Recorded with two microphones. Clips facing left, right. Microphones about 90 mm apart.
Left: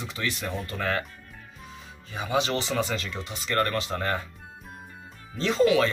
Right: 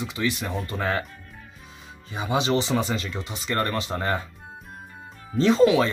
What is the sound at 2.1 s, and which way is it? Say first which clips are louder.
Speech: right 3 dB; 20° right (ahead or behind).